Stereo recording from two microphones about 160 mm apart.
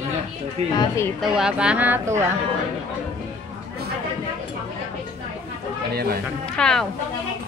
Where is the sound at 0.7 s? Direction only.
15° left (ahead or behind).